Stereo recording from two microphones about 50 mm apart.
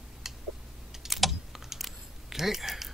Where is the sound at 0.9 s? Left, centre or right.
Centre.